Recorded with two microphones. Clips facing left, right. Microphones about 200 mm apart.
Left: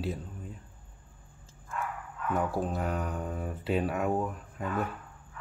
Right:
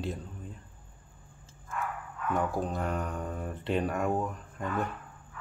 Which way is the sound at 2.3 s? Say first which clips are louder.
Even; 5° left (ahead or behind).